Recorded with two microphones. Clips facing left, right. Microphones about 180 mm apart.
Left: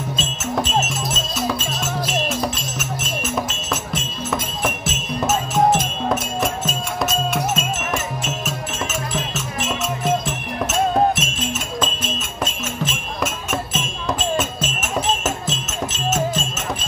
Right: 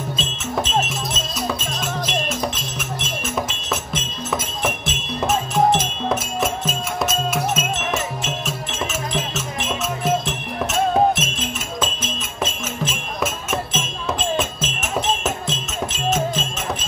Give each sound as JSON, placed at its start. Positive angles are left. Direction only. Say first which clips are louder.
{"t": 0.2, "sound": "music", "louder": "left 2 dB", "side_deg": 0}
{"t": 10.0, "sound": "music", "louder": "even", "side_deg": 0}